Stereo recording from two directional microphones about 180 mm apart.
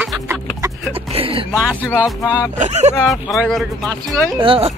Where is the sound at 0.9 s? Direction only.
30° right (ahead or behind).